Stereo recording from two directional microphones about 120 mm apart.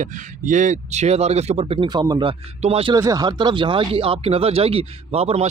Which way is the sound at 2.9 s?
30° right (ahead or behind).